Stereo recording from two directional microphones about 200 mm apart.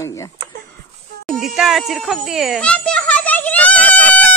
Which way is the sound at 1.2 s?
Centre (ahead or behind).